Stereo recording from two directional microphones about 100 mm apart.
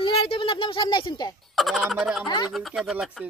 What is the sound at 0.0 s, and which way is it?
A woman's voice, 60° left (ahead or behind).